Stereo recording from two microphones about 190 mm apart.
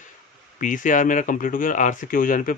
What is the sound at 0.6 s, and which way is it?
Speech, 45° left (ahead or behind).